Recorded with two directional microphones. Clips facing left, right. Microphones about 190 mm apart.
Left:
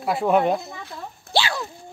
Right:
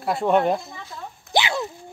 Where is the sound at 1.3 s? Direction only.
20° right (ahead or behind).